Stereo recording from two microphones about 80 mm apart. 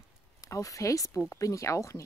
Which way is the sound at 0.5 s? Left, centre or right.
Left.